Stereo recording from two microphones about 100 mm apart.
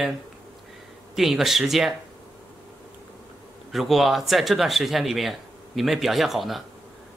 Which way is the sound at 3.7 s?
Centre (ahead or behind).